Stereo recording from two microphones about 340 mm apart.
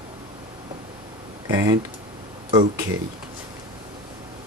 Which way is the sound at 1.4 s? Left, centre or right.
Centre.